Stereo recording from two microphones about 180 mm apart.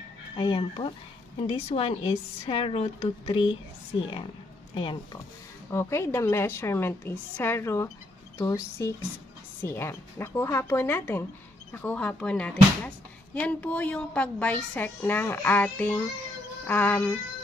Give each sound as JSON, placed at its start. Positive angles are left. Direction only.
{"t": 0.4, "sound": "a woman's voice", "side_deg": 30}
{"t": 4.7, "sound": "speech", "side_deg": 25}
{"t": 5.7, "sound": "speech", "side_deg": 15}